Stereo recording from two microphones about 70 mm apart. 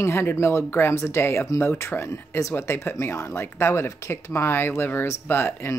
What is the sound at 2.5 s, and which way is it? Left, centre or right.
Speech, left.